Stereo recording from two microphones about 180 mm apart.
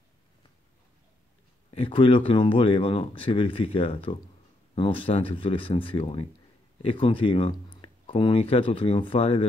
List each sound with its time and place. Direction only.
1.7 s speech: 30° left (ahead or behind)